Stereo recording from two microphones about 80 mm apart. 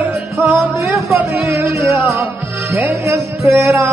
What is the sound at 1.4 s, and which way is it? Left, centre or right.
Music, right.